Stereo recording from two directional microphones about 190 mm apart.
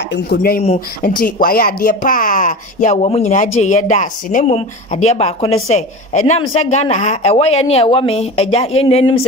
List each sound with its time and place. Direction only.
0.1 s a woman's voice: 55° left (ahead or behind); by 9.2 s 30° left (ahead or behind)